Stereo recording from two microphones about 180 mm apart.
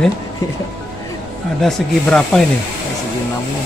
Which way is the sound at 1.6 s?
Centre (ahead or behind).